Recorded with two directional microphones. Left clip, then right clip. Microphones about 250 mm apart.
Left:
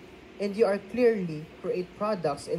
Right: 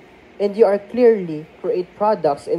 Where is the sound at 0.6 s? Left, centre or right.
Right.